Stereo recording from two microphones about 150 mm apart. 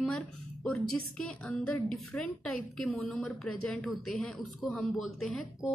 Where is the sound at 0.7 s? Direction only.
5° left (ahead or behind).